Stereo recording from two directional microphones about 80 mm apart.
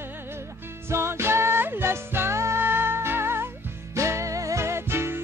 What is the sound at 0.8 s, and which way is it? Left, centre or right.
Music, right.